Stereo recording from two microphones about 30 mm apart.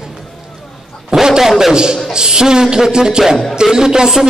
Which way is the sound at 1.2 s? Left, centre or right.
Right.